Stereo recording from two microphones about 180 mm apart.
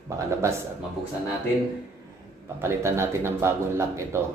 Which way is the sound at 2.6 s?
15° right (ahead or behind).